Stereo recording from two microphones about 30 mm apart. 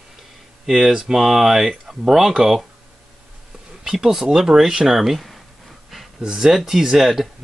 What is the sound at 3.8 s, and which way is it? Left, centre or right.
Speech, centre.